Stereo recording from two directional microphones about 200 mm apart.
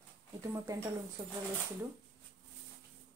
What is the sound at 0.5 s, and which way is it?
Speech, 15° right (ahead or behind).